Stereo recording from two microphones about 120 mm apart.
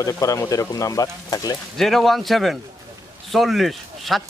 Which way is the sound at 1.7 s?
Centre (ahead or behind).